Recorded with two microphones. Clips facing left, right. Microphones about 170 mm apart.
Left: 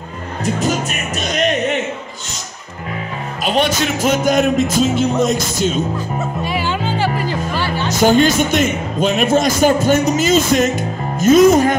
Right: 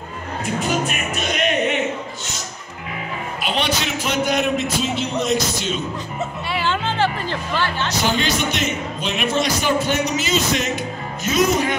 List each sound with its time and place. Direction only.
0.6 s speech: 40° left (ahead or behind)
3.4 s a man's voice: 45° left (ahead or behind)
6.4 s music: 10° left (ahead or behind)
7.2 s speech: 10° left (ahead or behind)
8.0 s a man's voice: 45° left (ahead or behind)